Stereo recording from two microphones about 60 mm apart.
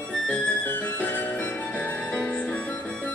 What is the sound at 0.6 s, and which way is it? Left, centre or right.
Music, left.